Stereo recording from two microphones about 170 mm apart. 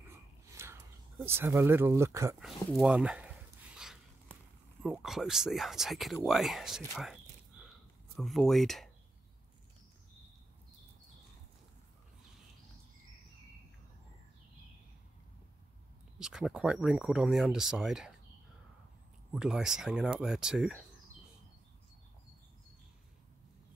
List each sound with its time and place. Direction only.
0.6 s a sound: 15° right (ahead or behind)
1.2 s speech: 15° right (ahead or behind)
2.4 s a sound: 5° right (ahead or behind)
4.8 s speech: centre (ahead or behind)
8.2 s speech: centre (ahead or behind)
16.2 s speech: 5° right (ahead or behind)
19.3 s speech: 5° right (ahead or behind)